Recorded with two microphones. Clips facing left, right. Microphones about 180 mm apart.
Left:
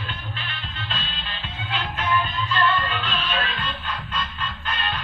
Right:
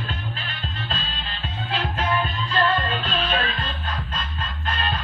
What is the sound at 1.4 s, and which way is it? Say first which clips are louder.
Music: right 3 dB; 40° right (ahead or behind).